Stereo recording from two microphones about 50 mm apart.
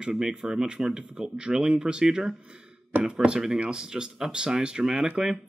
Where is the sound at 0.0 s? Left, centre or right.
Centre.